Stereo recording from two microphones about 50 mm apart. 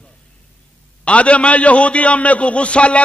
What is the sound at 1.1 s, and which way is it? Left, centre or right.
A man's voice, left.